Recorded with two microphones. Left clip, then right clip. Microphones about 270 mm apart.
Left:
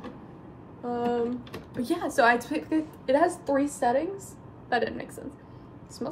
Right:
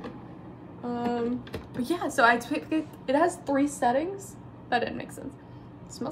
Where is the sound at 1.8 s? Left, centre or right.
Centre.